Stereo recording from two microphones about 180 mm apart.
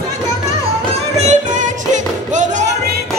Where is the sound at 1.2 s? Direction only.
40° right (ahead or behind).